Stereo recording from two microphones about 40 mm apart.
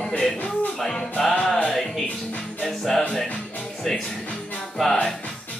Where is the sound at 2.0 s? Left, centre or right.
Left.